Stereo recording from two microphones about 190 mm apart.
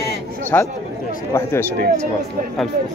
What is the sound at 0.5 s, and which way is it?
Speech, 10° left (ahead or behind).